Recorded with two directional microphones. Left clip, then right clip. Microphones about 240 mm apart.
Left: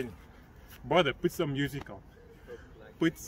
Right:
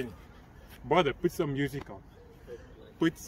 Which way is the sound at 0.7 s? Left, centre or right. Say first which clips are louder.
Even; centre.